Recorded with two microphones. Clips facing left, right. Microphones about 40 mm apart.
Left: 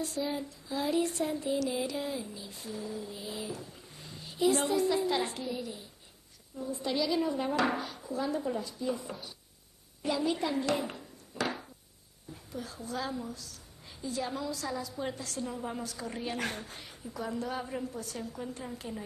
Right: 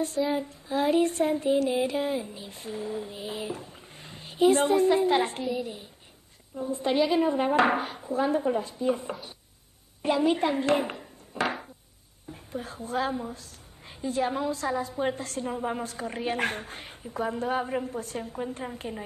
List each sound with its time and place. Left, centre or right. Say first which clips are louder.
0.3 s a woman's voice: right 7 dB; right